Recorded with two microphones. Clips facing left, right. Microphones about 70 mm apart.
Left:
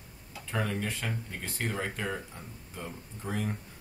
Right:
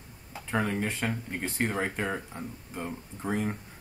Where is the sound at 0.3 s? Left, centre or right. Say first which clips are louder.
Right 4 dB; right.